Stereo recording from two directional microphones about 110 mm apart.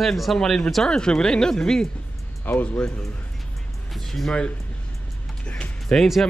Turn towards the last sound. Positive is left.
turn(degrees=0)  # may be behind; listen again after turning